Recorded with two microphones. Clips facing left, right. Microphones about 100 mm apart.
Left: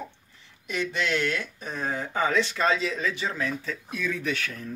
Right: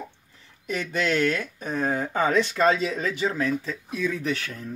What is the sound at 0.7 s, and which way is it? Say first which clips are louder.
Speech: right 2 dB; 40° right (ahead or behind).